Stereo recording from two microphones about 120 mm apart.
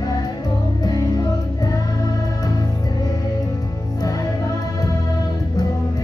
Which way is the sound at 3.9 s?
30° left (ahead or behind).